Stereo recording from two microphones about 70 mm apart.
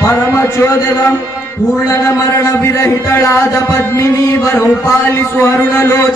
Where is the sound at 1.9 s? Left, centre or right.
Left.